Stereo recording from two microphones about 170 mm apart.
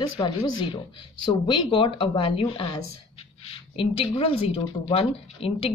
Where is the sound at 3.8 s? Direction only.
30° left (ahead or behind).